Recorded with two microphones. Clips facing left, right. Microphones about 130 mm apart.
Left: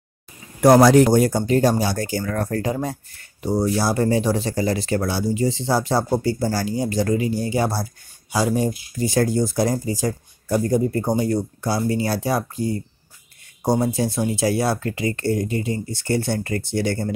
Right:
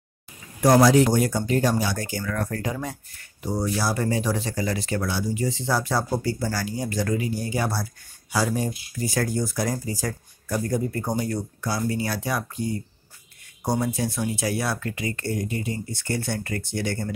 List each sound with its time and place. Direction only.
0.6 s speech: 60° left (ahead or behind)
1.0 s speech: 35° left (ahead or behind)